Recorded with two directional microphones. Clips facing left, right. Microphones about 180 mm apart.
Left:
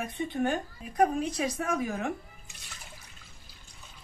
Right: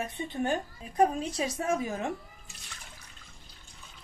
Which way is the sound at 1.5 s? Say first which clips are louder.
Right 1 dB; 25° right (ahead or behind).